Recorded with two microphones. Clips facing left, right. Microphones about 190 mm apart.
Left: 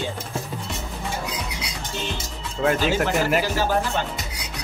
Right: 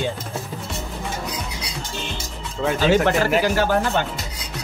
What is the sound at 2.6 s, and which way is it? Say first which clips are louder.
Speech: left 2 dB; 5° left (ahead or behind).